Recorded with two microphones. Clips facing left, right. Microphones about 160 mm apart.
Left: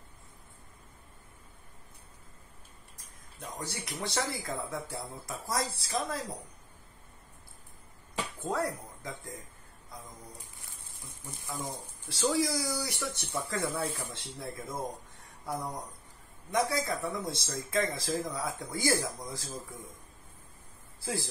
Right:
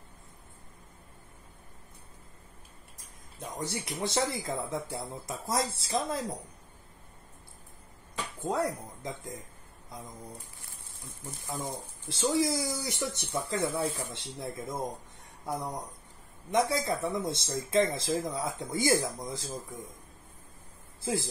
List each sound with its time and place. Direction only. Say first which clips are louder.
3.3 s speech: right 4 dB; 20° right (ahead or behind)
8.4 s speech: right 3 dB; 20° right (ahead or behind)
11.4 s speech: right 2 dB; 20° right (ahead or behind)
21.0 s speech: right 4 dB; 20° right (ahead or behind)